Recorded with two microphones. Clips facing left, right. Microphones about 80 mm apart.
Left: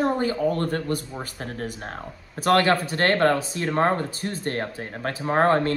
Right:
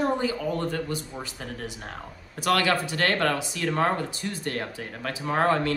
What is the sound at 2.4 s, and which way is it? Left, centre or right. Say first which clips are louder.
Speech: left 4 dB; left.